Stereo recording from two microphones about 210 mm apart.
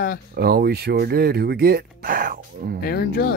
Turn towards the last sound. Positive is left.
turn(degrees=50)  # may be behind; listen again after turning